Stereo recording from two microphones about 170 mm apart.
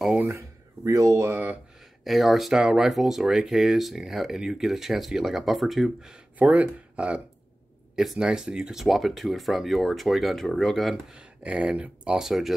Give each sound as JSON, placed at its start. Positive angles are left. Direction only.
{"t": 0.0, "sound": "a sound", "side_deg": -5}
{"t": 0.8, "sound": "speech", "side_deg": -20}
{"t": 2.0, "sound": "speech", "side_deg": 0}